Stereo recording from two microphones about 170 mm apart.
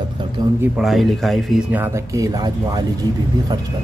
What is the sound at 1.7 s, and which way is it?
Speech, 15° right (ahead or behind).